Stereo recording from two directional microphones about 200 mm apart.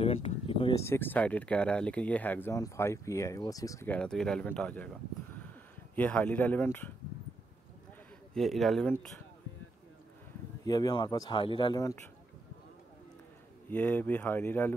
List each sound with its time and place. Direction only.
0.0 s a sound: 30° left (ahead or behind)
0.8 s speech: 10° left (ahead or behind)
8.4 s speech: centre (ahead or behind)
10.6 s speech: 20° left (ahead or behind)
13.7 s speech: 10° left (ahead or behind)